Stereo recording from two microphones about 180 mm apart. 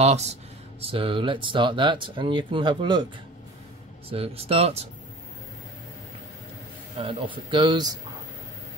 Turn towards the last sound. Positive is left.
turn(degrees=-25)  # may be behind; listen again after turning